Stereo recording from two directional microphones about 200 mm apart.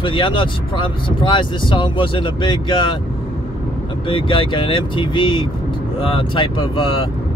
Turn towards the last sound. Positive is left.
turn(degrees=25)  # may be behind; listen again after turning